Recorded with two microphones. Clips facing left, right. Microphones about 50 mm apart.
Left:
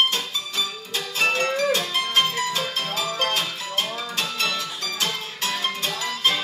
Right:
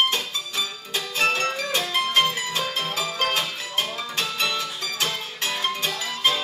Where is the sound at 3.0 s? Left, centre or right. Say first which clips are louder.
Left 1 dB; centre.